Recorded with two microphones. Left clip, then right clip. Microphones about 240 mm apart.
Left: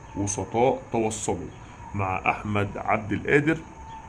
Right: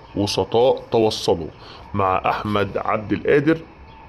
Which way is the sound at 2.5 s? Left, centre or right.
Centre.